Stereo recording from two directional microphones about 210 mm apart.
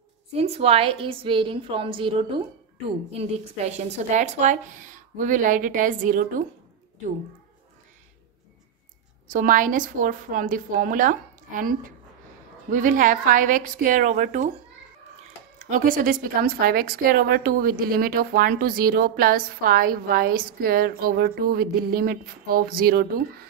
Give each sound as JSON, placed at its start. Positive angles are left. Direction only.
{"t": 0.3, "sound": "a woman's voice", "side_deg": -30}
{"t": 9.3, "sound": "a woman's voice", "side_deg": -40}
{"t": 12.7, "sound": "a woman's voice", "side_deg": -40}